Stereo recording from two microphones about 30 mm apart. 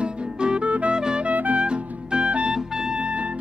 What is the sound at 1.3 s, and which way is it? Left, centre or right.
Music, right.